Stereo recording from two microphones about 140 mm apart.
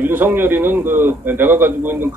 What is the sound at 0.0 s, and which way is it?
A man's voice, 15° right (ahead or behind).